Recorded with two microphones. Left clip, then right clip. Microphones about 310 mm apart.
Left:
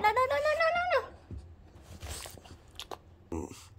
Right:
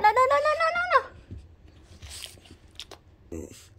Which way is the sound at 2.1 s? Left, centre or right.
Left.